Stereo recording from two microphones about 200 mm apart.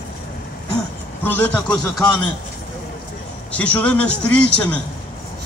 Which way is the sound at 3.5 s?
5° left (ahead or behind).